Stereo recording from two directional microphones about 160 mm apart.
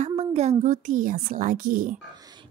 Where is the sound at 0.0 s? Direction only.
40° right (ahead or behind); by 2.0 s 60° right (ahead or behind).